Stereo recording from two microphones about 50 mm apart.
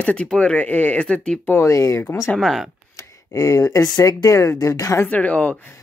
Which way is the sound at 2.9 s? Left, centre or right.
Left.